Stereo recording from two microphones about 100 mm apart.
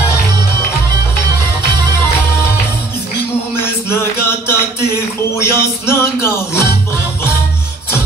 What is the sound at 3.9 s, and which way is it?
Music, 25° left (ahead or behind).